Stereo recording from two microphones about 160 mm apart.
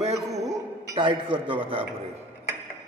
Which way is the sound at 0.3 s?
20° right (ahead or behind).